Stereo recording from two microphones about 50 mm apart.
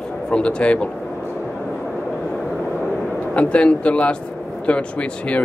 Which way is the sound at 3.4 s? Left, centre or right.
Left.